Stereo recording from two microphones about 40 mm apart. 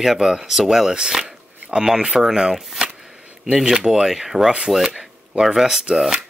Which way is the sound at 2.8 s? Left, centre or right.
Right.